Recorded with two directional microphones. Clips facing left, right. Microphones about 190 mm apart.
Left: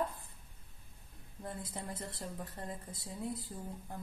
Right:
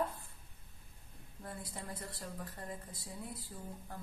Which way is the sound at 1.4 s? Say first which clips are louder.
Left 3 dB; 20° left (ahead or behind).